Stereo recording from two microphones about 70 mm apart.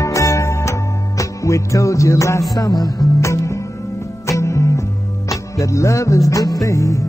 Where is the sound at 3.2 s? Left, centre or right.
Left.